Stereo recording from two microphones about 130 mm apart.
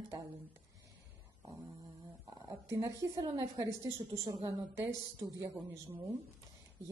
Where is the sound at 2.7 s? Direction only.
25° right (ahead or behind).